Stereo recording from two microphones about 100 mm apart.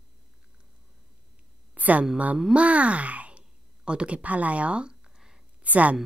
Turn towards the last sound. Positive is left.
turn(degrees=-15)  # may be behind; listen again after turning